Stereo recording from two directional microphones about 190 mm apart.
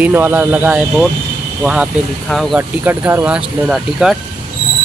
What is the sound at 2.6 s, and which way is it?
Speech, 10° right (ahead or behind).